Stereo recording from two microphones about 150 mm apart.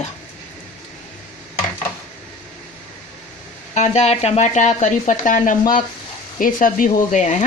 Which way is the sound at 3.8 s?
50° left (ahead or behind).